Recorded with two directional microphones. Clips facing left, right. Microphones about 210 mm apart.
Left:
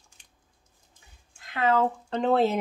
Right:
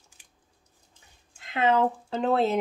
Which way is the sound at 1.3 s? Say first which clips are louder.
Right 1 dB; 25° right (ahead or behind).